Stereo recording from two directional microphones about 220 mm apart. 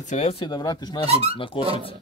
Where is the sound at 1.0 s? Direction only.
25° right (ahead or behind).